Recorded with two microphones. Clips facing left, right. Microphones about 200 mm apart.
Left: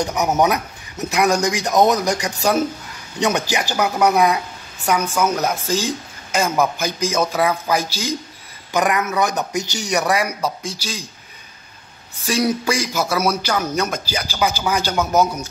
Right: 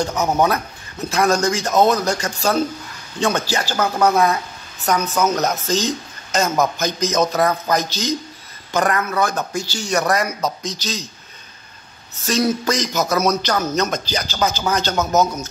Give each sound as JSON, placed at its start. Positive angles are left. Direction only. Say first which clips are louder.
{"t": 0.0, "sound": "speech", "louder": "even", "side_deg": 15}
{"t": 12.3, "sound": "speech", "louder": "even", "side_deg": 10}